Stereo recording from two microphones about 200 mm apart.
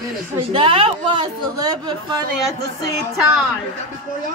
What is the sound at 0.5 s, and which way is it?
Speech, 25° right (ahead or behind).